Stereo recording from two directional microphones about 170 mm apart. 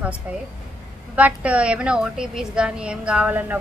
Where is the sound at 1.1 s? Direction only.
10° right (ahead or behind).